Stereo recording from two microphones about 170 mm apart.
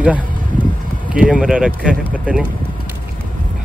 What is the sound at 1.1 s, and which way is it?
A man's voice, 5° right (ahead or behind).